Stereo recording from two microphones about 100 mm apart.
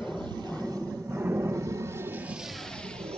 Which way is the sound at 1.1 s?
25° right (ahead or behind).